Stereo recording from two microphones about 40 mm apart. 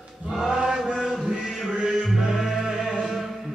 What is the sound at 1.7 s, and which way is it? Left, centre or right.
Music, centre.